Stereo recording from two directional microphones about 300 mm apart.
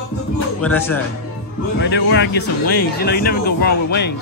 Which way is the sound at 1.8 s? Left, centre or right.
Left.